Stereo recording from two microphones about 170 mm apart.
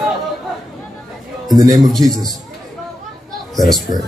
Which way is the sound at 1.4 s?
20° right (ahead or behind).